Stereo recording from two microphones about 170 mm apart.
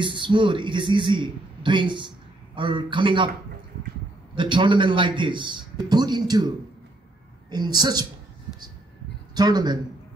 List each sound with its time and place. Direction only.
0.0 s a man's voice: 30° right (ahead or behind)
4.4 s a man's voice: 30° right (ahead or behind)
7.5 s a man's voice: 25° right (ahead or behind)
9.3 s speech: 25° right (ahead or behind)